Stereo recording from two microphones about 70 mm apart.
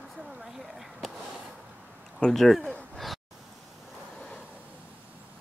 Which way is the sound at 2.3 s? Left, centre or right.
Centre.